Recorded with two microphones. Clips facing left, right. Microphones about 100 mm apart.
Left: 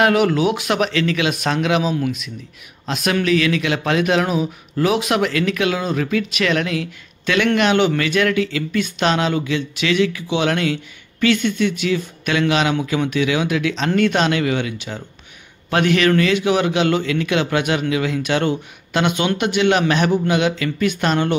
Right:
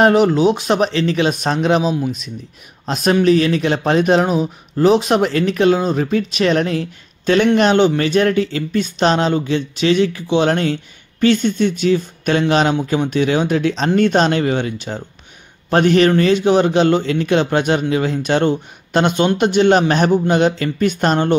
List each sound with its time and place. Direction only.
0.0 s speech: 30° right (ahead or behind)